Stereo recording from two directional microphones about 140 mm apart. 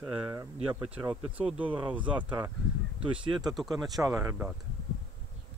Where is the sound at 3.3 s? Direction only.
30° right (ahead or behind).